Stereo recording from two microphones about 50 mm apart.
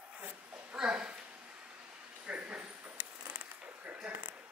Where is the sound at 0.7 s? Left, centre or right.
Centre.